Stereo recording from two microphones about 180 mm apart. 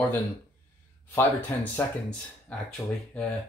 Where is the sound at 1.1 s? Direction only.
10° left (ahead or behind).